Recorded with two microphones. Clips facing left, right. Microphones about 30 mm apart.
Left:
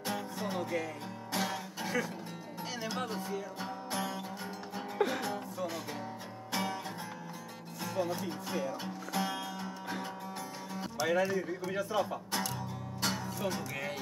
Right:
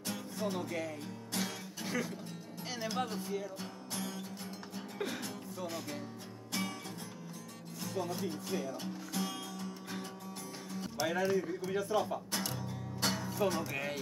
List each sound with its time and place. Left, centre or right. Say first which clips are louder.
0.0 s music: left 2 dB; centre
1.9 s speech: left 2 dB; centre
3.6 s music: left 5 dB; centre
7.8 s music: left 3 dB; centre
11.0 s speech: left 2 dB; centre
12.5 s music: left 1 dB; centre